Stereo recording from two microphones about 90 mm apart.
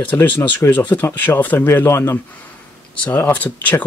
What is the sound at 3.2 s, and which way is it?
Speech, 20° left (ahead or behind).